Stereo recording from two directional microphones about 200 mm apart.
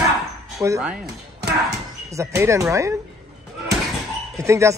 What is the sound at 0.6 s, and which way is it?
Speech, 15° right (ahead or behind).